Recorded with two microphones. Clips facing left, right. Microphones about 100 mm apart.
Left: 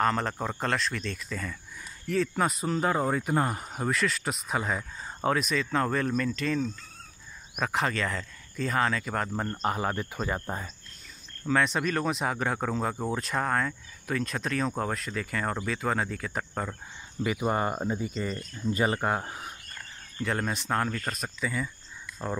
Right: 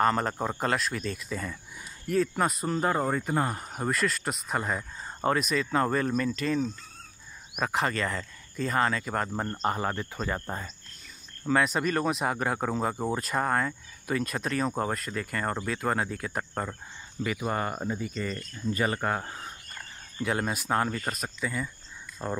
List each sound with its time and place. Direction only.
0.0 s speech: 5° right (ahead or behind); by 10.7 s 10° left (ahead or behind)
11.4 s speech: 5° right (ahead or behind)
17.2 s speech: 15° left (ahead or behind)
19.8 s speech: 5° right (ahead or behind)